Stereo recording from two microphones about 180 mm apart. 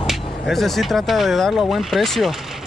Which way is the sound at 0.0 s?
Centre (ahead or behind).